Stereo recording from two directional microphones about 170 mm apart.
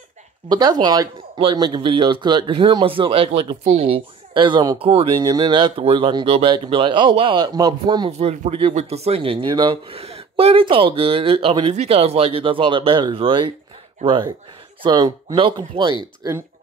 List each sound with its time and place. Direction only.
0.5 s speech: 25° right (ahead or behind)
14.8 s speech: 25° right (ahead or behind)